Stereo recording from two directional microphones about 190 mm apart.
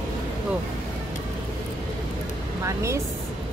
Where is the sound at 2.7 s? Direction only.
15° right (ahead or behind).